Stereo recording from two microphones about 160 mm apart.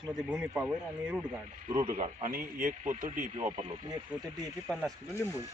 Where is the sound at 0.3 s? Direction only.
5° right (ahead or behind).